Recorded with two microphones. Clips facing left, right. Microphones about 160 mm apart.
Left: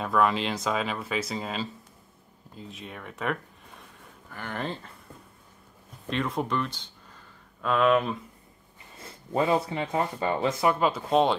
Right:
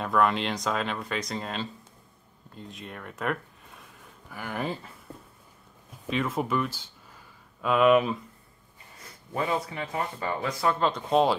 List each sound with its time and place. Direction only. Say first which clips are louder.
0.0 s speech: even; centre (ahead or behind)
6.0 s speech: right 1 dB; centre (ahead or behind)
8.9 s speech: left 5 dB; 25° left (ahead or behind)
10.8 s speech: right 2 dB; 5° left (ahead or behind)